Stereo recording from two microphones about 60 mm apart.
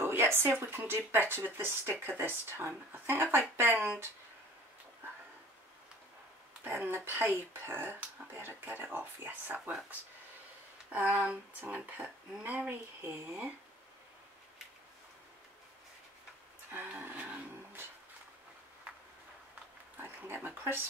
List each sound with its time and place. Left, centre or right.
0.0 s speech: right
6.6 s speech: right
10.9 s speech: right
16.7 s speech: right
17.1 s vehicle: right
20.0 s speech: right